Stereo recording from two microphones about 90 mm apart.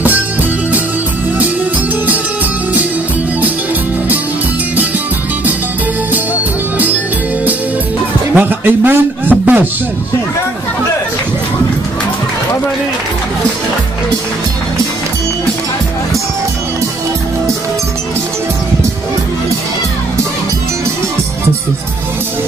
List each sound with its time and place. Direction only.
0.0 s music: 20° right (ahead or behind)
8.4 s a man's voice: 20° right (ahead or behind)